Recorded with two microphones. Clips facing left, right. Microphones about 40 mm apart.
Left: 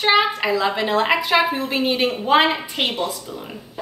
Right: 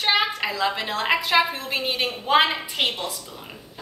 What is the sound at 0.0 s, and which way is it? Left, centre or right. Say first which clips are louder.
A woman's voice: left 5 dB; centre.